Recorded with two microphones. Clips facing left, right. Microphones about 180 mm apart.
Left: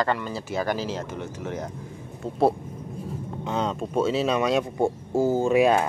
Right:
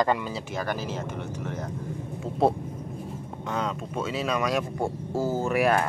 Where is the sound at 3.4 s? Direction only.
25° left (ahead or behind).